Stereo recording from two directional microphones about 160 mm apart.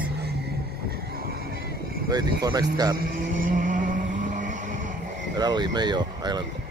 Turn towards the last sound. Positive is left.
turn(degrees=-25)  # may be behind; listen again after turning